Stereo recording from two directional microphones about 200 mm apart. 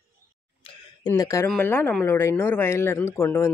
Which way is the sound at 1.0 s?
15° left (ahead or behind).